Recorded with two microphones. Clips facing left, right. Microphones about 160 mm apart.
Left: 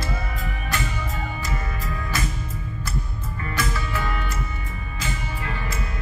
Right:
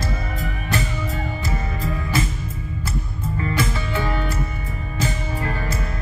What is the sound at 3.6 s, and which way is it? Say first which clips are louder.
Music: right 1 dB; 30° right (ahead or behind).